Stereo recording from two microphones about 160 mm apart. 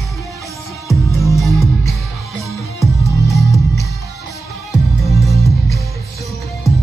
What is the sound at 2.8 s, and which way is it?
Music, 20° left (ahead or behind).